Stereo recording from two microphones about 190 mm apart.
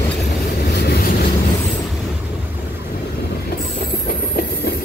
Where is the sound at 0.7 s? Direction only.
55° left (ahead or behind).